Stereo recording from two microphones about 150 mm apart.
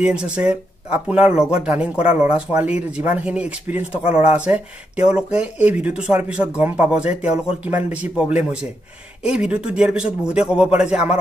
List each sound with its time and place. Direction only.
0.0 s a man's voice: 5° right (ahead or behind)